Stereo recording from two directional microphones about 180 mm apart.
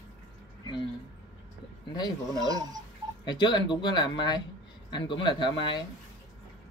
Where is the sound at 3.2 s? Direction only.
25° left (ahead or behind).